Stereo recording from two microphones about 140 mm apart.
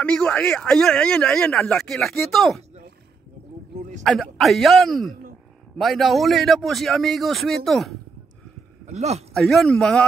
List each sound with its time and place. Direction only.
0.0 s speech: 10° left (ahead or behind)
4.0 s speech: centre (ahead or behind)
8.8 s speech: 50° right (ahead or behind)
9.3 s speech: centre (ahead or behind)